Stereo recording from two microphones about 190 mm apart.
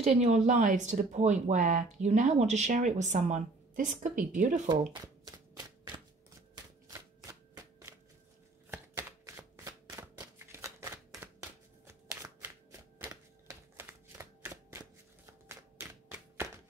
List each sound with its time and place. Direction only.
0.0 s speech: 35° right (ahead or behind)
4.9 s a sound: 20° right (ahead or behind)
11.9 s shuffling cards: 10° right (ahead or behind)
13.1 s typewriter: 15° right (ahead or behind)
15.2 s music: 10° right (ahead or behind)